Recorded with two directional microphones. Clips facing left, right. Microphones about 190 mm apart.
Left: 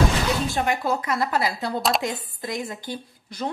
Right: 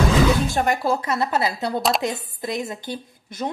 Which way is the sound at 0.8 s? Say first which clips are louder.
Right 2 dB; 30° right (ahead or behind).